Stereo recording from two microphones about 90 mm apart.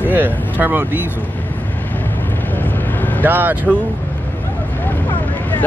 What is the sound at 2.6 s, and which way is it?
Vehicle, 20° left (ahead or behind).